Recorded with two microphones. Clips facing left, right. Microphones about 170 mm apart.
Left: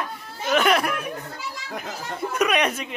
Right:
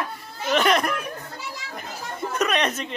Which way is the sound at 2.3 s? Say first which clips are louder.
Left 2 dB; 10° left (ahead or behind).